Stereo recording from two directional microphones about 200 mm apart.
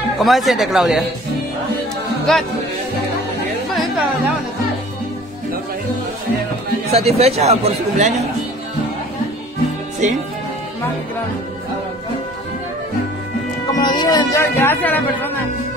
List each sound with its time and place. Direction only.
0.2 s speech: centre (ahead or behind)
2.3 s speech: 5° left (ahead or behind)
6.9 s speech: 30° right (ahead or behind)
10.0 s speech: 35° right (ahead or behind)
13.7 s speech: 20° left (ahead or behind)